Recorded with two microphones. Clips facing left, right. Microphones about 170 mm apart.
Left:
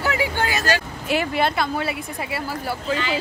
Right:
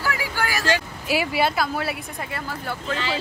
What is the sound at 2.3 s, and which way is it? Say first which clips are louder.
Speech: left 4 dB; 10° left (ahead or behind).